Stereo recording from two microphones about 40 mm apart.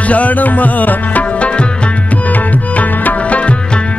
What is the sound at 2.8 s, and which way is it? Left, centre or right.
Music, left.